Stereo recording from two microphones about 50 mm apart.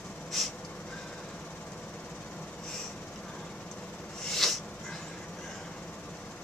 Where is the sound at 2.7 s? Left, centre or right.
Centre.